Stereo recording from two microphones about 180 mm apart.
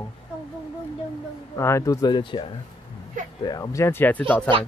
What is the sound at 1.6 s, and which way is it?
Speech, 15° left (ahead or behind).